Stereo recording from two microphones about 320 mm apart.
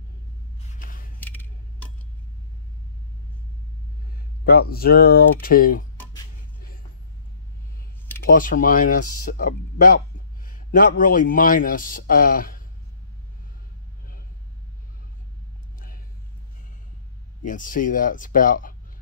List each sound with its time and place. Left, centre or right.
0.7 s a sound: left
1.2 s a sound: centre
4.5 s speech: left
8.3 s speech: left
9.0 s speech: left
9.4 s a man's voice: left
17.5 s speech: left